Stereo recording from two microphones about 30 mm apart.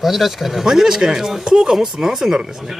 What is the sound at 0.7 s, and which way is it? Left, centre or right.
Speech, right.